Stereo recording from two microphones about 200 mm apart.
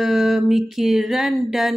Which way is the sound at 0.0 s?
Centre (ahead or behind).